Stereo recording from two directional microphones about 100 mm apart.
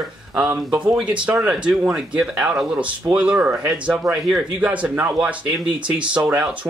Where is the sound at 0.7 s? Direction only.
10° right (ahead or behind).